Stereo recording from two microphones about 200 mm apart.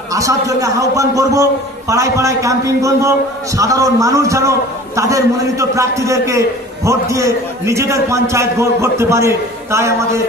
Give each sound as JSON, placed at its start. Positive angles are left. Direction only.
{"t": 0.1, "sound": "a man's voice", "side_deg": -15}